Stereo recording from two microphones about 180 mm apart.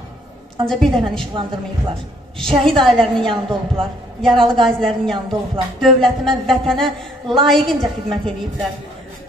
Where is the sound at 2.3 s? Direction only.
Centre (ahead or behind).